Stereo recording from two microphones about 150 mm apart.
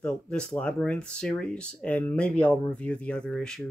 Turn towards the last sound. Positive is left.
turn(degrees=5)  # may be behind; listen again after turning